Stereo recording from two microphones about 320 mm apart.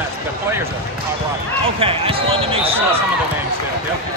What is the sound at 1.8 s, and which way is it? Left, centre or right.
Speech, centre.